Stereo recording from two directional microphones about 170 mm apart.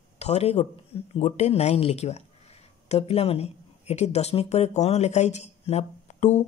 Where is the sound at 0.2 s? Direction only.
40° left (ahead or behind).